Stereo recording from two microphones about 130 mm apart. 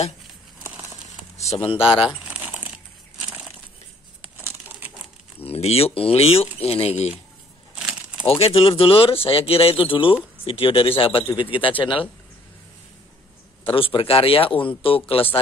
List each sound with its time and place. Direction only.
1.4 s speech: 50° left (ahead or behind)
2.2 s crumpling: 10° right (ahead or behind)
4.2 s a sound: 15° right (ahead or behind)
5.4 s speech: 50° left (ahead or behind)
8.2 s a man's voice: 50° left (ahead or behind)
13.7 s speech: 45° left (ahead or behind)